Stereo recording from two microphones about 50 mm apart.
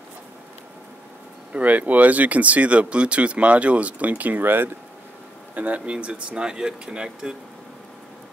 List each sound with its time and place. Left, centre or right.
1.5 s speech: right
5.5 s speech: right